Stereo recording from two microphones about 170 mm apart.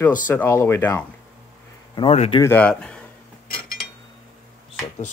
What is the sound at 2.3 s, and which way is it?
Speech, 10° left (ahead or behind).